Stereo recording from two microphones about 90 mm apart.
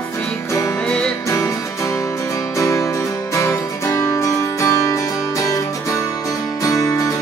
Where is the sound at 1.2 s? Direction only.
35° left (ahead or behind).